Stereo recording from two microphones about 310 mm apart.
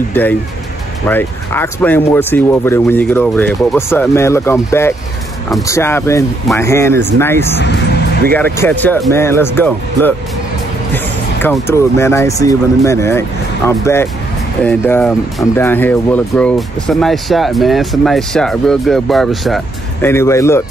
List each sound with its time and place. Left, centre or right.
0.1 s speech: centre
7.6 s vehicle: left
8.5 s speech: centre
11.4 s speech: centre